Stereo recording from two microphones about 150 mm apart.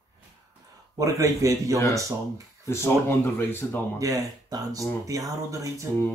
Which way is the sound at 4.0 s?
25° right (ahead or behind).